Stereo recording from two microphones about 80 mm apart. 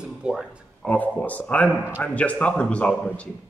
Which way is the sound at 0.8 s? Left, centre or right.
Centre.